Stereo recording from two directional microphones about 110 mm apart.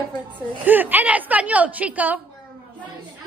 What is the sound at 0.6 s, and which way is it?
A woman's voice, 15° right (ahead or behind).